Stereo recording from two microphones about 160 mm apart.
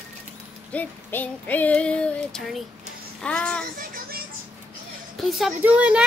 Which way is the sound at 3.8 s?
70° right (ahead or behind).